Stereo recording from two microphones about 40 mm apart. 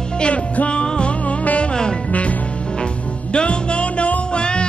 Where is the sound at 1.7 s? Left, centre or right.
Left.